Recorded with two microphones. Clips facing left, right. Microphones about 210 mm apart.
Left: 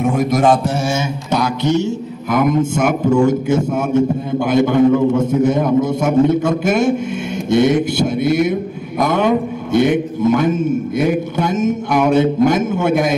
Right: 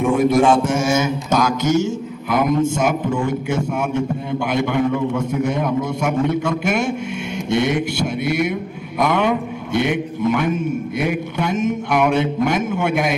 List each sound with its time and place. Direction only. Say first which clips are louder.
0.0 s a man's voice: even; 40° left (ahead or behind)
2.3 s a man's voice: left 2 dB; 50° left (ahead or behind)